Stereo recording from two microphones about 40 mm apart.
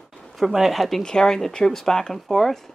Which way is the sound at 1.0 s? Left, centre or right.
Centre.